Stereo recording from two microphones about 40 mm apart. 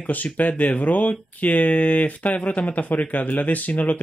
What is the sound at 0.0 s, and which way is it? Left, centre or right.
Speech, left.